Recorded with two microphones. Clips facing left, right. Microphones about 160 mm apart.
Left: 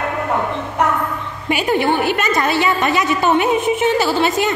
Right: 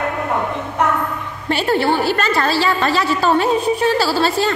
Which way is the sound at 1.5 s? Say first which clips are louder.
Even; 15° left (ahead or behind).